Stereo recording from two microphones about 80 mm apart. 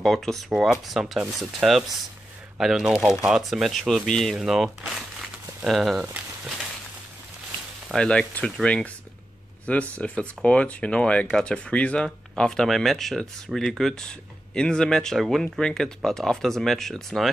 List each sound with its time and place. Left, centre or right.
0.0 s speech: centre
7.9 s speech: centre